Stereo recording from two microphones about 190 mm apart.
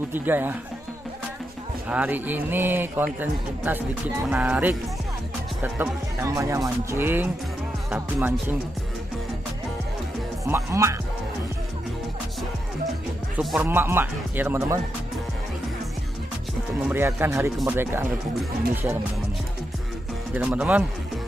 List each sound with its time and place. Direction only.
0.1 s a man's voice: 10° right (ahead or behind)
1.9 s a man's voice: 10° right (ahead or behind)
10.4 s a man's voice: 15° right (ahead or behind)
13.4 s speech: centre (ahead or behind)
13.7 s a man's voice: 10° right (ahead or behind)
16.8 s a man's voice: 10° right (ahead or behind)
20.3 s a man's voice: 5° right (ahead or behind)